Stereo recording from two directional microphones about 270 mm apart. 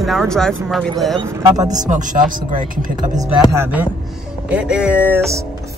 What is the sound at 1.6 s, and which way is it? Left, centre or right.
Speech, right.